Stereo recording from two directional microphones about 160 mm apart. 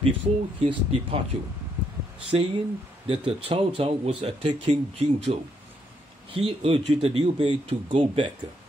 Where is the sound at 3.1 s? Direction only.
35° right (ahead or behind).